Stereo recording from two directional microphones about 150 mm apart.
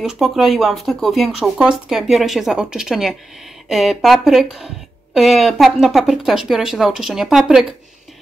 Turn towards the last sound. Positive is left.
turn(degrees=-5)  # may be behind; listen again after turning